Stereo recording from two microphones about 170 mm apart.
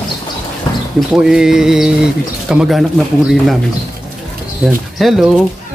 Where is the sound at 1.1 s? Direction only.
5° right (ahead or behind).